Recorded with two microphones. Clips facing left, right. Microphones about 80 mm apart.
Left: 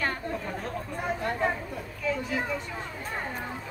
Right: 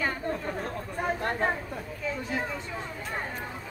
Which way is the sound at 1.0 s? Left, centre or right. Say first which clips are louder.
Even; right.